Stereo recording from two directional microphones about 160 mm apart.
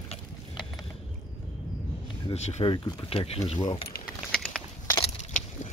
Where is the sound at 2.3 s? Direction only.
45° left (ahead or behind).